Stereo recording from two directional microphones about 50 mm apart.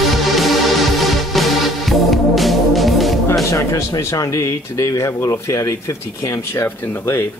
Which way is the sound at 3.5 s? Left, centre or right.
Left.